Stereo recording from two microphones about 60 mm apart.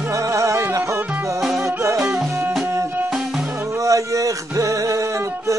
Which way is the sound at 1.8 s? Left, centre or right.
Right.